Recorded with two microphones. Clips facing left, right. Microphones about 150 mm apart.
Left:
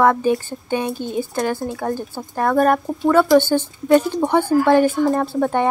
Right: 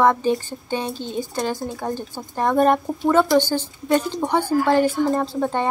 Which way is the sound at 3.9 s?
10° left (ahead or behind).